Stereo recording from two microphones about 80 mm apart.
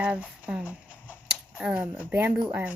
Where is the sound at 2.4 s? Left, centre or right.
Centre.